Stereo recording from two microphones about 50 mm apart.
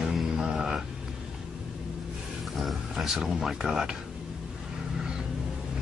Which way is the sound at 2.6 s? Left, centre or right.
Centre.